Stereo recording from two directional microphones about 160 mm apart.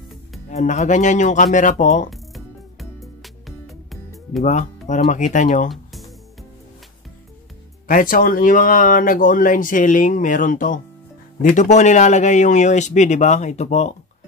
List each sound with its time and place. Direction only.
0.5 s speech: 50° left (ahead or behind)
2.0 s music: centre (ahead or behind)
4.4 s speech: 45° left (ahead or behind)
5.7 s music: centre (ahead or behind)
7.9 s speech: 60° left (ahead or behind)